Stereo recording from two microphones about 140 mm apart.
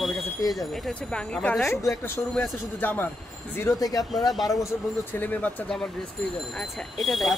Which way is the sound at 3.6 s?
25° left (ahead or behind).